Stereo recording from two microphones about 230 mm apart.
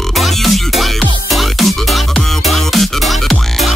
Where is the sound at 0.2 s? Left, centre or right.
Centre.